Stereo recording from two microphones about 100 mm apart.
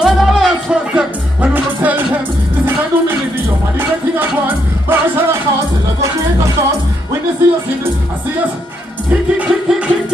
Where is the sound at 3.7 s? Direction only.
20° right (ahead or behind).